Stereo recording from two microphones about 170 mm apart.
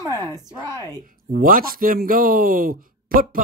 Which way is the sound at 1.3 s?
55° right (ahead or behind).